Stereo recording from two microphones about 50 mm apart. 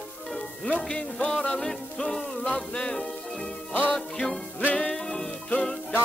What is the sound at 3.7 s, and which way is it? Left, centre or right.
Music, left.